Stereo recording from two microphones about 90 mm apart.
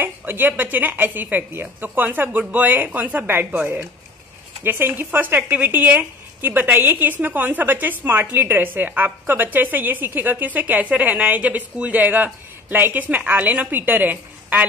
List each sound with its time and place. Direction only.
0.0 s a woman's voice: 20° right (ahead or behind)